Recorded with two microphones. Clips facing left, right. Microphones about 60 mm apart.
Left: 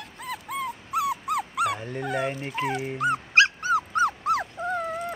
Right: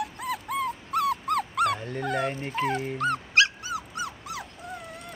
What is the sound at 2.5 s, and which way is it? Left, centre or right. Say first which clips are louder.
Speech: right 1 dB; centre.